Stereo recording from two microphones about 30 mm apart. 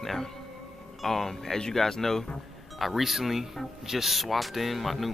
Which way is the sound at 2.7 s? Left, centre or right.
Centre.